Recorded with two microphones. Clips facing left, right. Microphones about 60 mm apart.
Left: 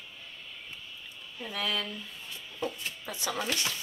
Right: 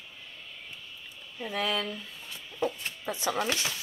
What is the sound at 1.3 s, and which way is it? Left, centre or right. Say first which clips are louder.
Speech: right 3 dB; centre.